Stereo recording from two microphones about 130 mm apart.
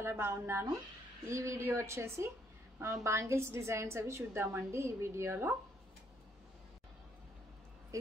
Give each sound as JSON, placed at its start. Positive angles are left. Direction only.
{"t": 0.0, "sound": "a woman's voice", "side_deg": -20}
{"t": 7.9, "sound": "speech", "side_deg": -25}